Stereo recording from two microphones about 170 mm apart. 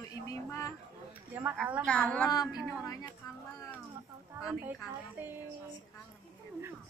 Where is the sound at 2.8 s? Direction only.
20° left (ahead or behind).